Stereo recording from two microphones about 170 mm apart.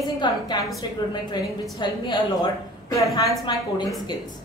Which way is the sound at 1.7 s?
25° left (ahead or behind).